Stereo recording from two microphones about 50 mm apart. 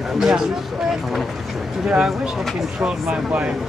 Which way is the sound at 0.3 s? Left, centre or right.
Centre.